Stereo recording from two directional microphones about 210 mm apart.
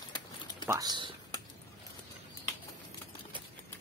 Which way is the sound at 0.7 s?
20° right (ahead or behind).